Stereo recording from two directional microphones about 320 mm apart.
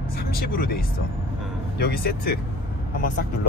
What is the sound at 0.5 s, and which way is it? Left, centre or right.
Speech, left.